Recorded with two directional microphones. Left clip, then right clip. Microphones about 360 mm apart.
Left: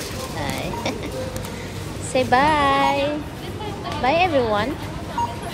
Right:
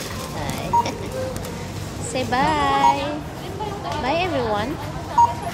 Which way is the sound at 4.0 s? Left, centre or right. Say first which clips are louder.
Left 4 dB; centre.